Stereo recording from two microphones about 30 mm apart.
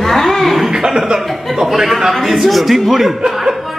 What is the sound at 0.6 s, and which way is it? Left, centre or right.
Speech, centre.